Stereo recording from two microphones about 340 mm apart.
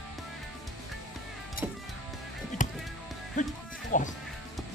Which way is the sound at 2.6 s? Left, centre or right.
Left.